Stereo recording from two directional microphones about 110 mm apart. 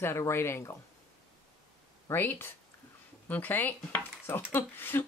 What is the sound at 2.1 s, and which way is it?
Speech, 20° left (ahead or behind).